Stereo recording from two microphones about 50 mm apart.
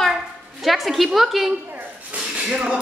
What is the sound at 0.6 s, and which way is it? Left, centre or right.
Speech, centre.